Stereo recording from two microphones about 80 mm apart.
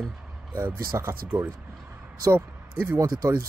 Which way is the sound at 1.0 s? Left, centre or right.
Right.